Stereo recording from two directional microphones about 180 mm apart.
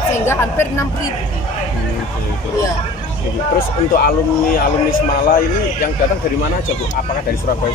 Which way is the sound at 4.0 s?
60° left (ahead or behind).